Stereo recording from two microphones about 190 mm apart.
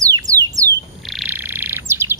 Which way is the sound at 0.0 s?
20° right (ahead or behind).